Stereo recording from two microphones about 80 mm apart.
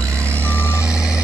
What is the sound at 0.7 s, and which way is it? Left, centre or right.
Reversing beeps, centre.